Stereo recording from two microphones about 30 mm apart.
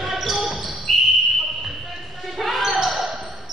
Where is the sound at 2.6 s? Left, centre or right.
Centre.